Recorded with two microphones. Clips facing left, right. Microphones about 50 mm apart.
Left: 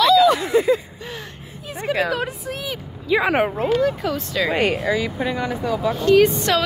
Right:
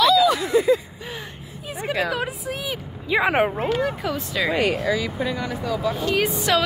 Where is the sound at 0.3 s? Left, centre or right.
Left.